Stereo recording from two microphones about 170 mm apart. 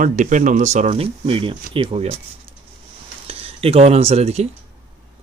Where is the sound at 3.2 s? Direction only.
35° right (ahead or behind).